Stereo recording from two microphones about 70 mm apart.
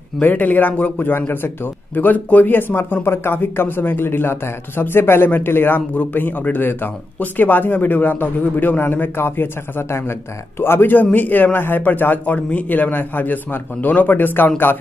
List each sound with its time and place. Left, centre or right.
0.2 s a man's voice: left